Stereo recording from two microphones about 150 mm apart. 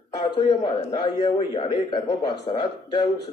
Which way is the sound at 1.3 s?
40° left (ahead or behind).